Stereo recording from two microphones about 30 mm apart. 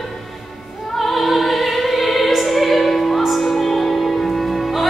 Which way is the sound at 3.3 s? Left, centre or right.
Centre.